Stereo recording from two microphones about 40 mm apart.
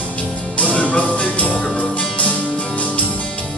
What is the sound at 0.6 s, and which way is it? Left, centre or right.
Music, left.